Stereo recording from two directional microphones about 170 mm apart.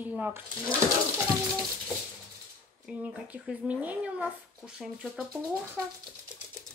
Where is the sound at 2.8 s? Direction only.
10° right (ahead or behind).